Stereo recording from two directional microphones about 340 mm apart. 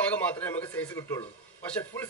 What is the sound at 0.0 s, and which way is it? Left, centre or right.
A man's voice, centre.